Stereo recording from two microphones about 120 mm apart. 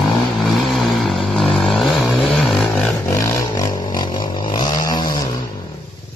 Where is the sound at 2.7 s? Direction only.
15° left (ahead or behind); by 5.1 s 30° left (ahead or behind).